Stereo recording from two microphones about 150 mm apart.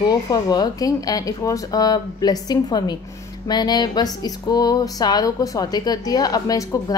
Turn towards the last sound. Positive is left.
turn(degrees=25)  # may be behind; listen again after turning